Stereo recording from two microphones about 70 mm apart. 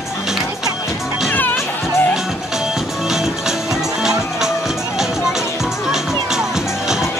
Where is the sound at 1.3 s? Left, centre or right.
Left.